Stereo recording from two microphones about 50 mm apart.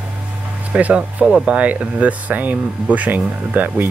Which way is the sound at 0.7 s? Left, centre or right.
Right.